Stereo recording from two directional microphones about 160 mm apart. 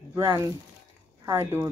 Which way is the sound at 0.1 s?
20° right (ahead or behind).